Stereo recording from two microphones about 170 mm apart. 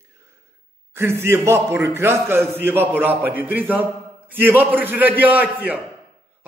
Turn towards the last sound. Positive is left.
turn(degrees=-10)  # may be behind; listen again after turning